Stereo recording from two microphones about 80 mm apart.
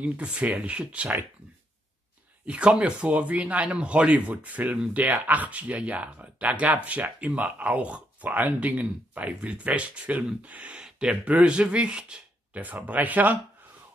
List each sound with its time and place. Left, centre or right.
0.0 s speech: centre
2.4 s speech: centre